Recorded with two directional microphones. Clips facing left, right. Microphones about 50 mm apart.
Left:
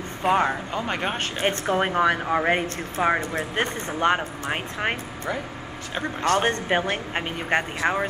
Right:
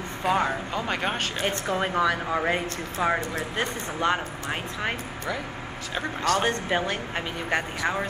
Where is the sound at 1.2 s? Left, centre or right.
Left.